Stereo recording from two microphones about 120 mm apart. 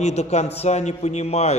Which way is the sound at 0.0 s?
70° left (ahead or behind).